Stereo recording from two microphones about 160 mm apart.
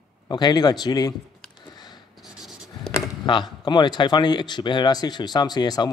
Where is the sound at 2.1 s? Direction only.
5° right (ahead or behind).